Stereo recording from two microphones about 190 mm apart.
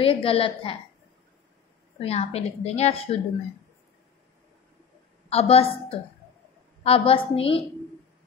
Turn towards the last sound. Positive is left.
turn(degrees=30)  # may be behind; listen again after turning